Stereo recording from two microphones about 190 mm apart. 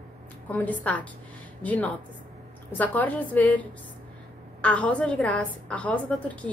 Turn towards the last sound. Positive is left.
turn(degrees=5)  # may be behind; listen again after turning